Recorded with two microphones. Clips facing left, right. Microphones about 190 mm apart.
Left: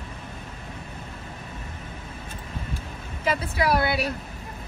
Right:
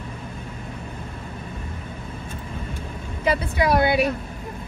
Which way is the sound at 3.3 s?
20° right (ahead or behind).